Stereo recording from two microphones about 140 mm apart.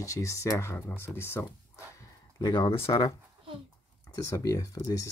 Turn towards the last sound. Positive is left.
turn(degrees=25)  # may be behind; listen again after turning